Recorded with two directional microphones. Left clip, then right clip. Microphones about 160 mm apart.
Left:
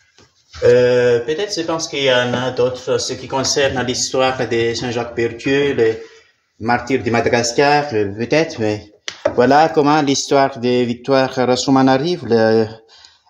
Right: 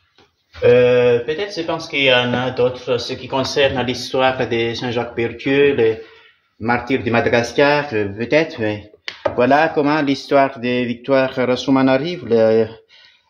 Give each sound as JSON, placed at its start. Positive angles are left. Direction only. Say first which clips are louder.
{"t": 0.7, "sound": "speech", "louder": "even", "side_deg": 5}
{"t": 8.2, "sound": "speech", "louder": "right 2 dB", "side_deg": 25}